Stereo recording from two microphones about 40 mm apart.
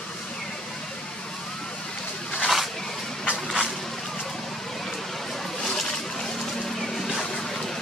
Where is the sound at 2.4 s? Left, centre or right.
Centre.